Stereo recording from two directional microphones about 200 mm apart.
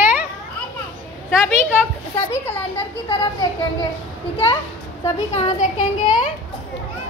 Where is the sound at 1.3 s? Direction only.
Centre (ahead or behind).